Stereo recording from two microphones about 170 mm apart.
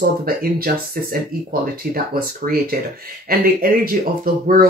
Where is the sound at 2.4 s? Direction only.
60° right (ahead or behind).